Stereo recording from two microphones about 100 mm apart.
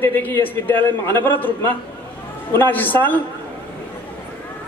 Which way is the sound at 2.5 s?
20° left (ahead or behind).